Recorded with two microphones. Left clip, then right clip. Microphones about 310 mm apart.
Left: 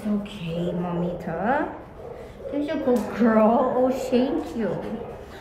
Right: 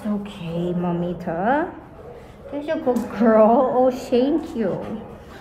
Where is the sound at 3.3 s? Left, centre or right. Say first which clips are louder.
Right 5 dB; right.